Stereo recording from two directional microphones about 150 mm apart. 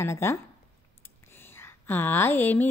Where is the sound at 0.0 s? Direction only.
20° left (ahead or behind).